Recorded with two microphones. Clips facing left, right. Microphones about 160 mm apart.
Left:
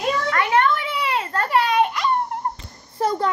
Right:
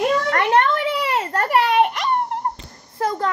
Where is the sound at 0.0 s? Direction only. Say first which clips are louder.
Right 3 dB; 65° right (ahead or behind).